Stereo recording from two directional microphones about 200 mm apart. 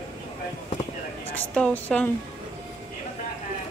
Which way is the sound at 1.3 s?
5° left (ahead or behind).